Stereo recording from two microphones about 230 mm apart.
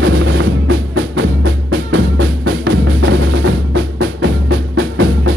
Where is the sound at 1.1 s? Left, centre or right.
Right.